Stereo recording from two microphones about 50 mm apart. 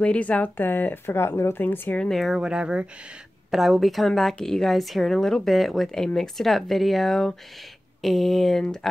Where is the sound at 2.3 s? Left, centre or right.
Centre.